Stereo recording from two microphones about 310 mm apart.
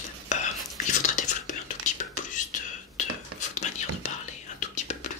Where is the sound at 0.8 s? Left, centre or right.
Left.